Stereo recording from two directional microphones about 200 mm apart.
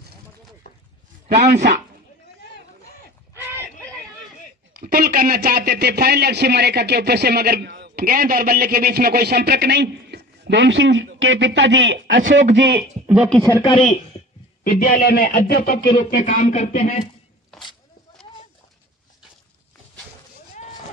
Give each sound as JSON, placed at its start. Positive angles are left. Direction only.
{"t": 4.8, "sound": "speech", "side_deg": -45}
{"t": 12.5, "sound": "speech", "side_deg": -55}
{"t": 13.6, "sound": "a woman's voice", "side_deg": 25}
{"t": 14.6, "sound": "speech", "side_deg": 45}
{"t": 15.9, "sound": "speech", "side_deg": 35}
{"t": 17.0, "sound": "a sound", "side_deg": 0}